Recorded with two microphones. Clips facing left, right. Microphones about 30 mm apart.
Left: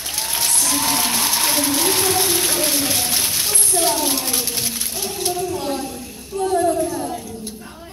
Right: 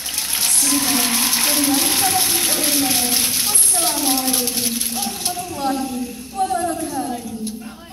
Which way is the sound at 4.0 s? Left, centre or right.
Right.